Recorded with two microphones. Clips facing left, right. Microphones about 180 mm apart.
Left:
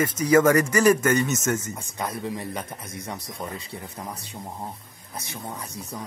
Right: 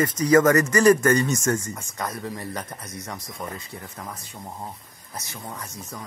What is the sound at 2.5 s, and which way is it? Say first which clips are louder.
Speech: even; 10° left (ahead or behind).